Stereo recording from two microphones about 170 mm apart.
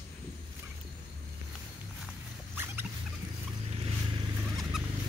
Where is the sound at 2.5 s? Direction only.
15° right (ahead or behind).